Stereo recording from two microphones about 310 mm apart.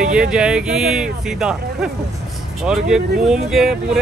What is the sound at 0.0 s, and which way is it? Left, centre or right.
Speech, centre.